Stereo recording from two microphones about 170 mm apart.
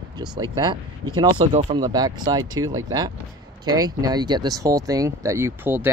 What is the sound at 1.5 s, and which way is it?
Speech, 45° right (ahead or behind).